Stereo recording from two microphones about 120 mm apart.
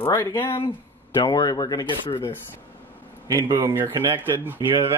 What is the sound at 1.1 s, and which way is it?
Speech, 35° left (ahead or behind).